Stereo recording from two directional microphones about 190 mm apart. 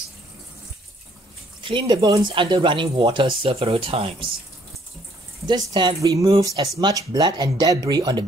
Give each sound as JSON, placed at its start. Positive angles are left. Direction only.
{"t": 1.6, "sound": "speech", "side_deg": -25}
{"t": 5.7, "sound": "speech", "side_deg": -25}